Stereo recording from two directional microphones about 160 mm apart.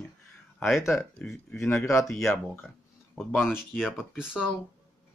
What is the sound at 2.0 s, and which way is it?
Speech, centre (ahead or behind).